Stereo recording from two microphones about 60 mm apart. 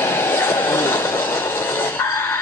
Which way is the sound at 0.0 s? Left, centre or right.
Left.